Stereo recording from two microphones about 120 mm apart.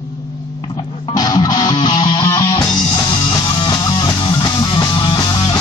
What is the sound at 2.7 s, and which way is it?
Music, 40° left (ahead or behind).